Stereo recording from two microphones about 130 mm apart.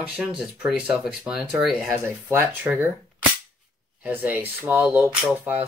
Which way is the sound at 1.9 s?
15° right (ahead or behind).